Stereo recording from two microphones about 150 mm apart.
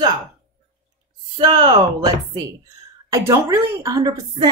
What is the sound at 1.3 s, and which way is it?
Speech, 35° right (ahead or behind).